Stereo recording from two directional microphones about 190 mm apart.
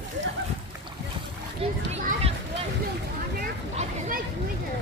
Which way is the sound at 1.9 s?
35° right (ahead or behind).